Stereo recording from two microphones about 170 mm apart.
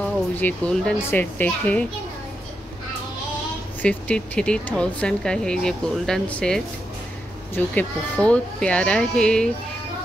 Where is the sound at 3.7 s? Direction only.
10° left (ahead or behind).